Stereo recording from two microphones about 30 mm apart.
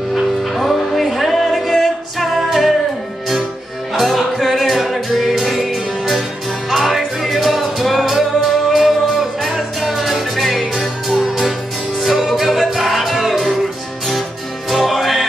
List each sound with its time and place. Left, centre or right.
0.1 s music: centre
4.0 s music: centre
14.7 s music: centre